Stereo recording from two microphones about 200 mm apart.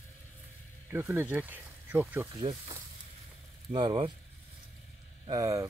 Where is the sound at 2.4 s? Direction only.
20° right (ahead or behind).